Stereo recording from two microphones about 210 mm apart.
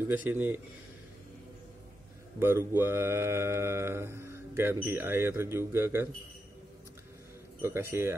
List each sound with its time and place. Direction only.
0.1 s speech: 10° right (ahead or behind)
2.3 s speech: 10° right (ahead or behind)
7.6 s speech: 10° right (ahead or behind)